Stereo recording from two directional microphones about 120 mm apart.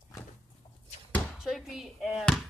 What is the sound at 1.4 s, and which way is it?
Speech, 5° right (ahead or behind).